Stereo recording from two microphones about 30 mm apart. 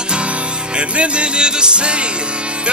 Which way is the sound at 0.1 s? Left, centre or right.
Right.